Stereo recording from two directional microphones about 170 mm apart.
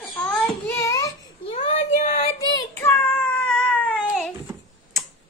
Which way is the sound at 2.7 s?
10° left (ahead or behind).